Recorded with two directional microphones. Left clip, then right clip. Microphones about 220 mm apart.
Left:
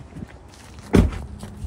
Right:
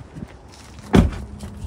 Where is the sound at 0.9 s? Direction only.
Centre (ahead or behind).